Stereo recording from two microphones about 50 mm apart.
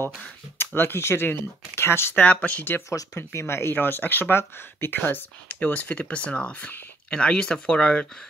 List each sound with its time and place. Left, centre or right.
0.6 s speech: left
2.1 s speech: left
3.2 s speech: left
3.7 s speech: left
4.9 s speech: left